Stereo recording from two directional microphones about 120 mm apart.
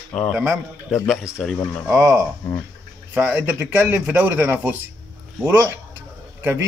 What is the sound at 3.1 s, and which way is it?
A man's voice, 15° right (ahead or behind).